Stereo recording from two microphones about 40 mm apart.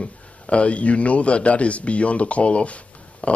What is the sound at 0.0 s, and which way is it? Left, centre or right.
A man's voice, left.